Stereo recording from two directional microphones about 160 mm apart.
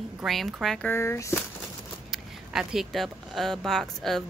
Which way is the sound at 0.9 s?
15° left (ahead or behind).